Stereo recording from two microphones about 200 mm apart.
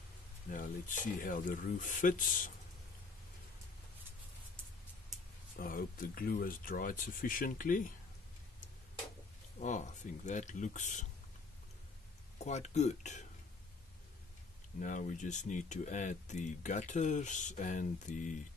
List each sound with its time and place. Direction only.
0.5 s speech: 40° left (ahead or behind)
5.6 s speech: 45° left (ahead or behind)
9.6 s speech: 40° left (ahead or behind)
12.4 s speech: 35° left (ahead or behind)
14.8 s speech: 40° left (ahead or behind)